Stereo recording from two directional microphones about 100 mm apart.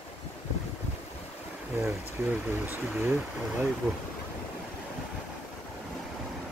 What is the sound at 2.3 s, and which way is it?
Speech, 20° right (ahead or behind).